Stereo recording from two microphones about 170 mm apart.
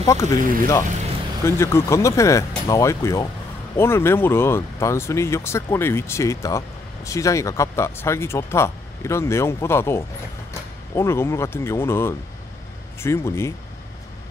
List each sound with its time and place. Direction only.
0.0 s speech: 20° left (ahead or behind)
0.4 s speech: 55° right (ahead or behind)
1.4 s speech: 15° left (ahead or behind)